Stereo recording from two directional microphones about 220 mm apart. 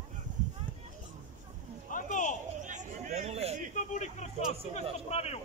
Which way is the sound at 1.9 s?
35° left (ahead or behind).